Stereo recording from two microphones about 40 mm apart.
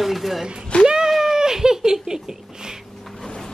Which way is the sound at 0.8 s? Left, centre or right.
Centre.